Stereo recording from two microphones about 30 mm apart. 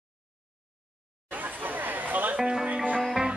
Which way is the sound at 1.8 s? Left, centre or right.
Right.